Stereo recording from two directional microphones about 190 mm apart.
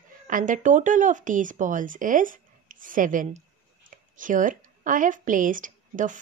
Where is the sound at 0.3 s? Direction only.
45° right (ahead or behind).